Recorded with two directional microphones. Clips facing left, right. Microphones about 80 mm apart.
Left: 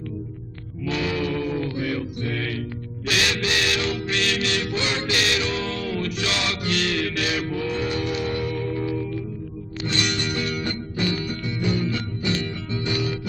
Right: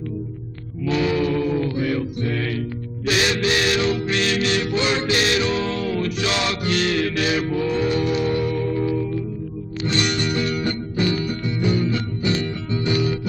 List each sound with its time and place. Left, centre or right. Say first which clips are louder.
0.8 s mantra: right 5 dB; right
3.1 s music: right 4 dB; right
9.8 s music: right 4 dB; right